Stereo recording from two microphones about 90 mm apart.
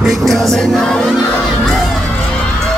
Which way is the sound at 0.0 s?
Centre (ahead or behind).